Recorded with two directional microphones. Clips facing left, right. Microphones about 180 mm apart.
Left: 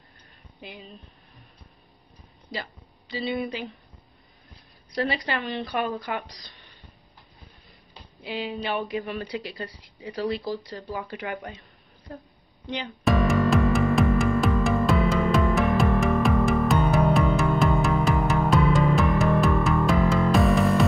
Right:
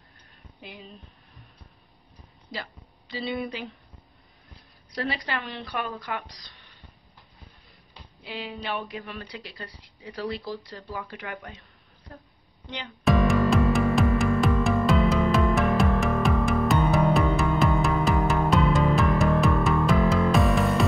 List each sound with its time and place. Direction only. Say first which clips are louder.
3.1 s speech: left 2 dB; centre (ahead or behind)
4.9 s speech: left 3 dB; centre (ahead or behind)
5.6 s speech: left 5 dB; 15° left (ahead or behind)
8.2 s speech: left 5 dB; 5° left (ahead or behind)
10.4 s speech: left 4 dB; 20° left (ahead or behind)
12.7 s music: even; centre (ahead or behind)